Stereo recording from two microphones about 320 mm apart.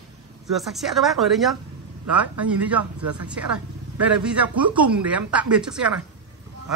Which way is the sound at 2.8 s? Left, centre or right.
Right.